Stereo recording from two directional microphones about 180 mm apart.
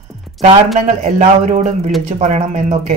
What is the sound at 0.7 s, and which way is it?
Speech, 40° right (ahead or behind).